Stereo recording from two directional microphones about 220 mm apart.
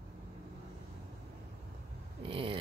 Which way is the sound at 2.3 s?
25° right (ahead or behind).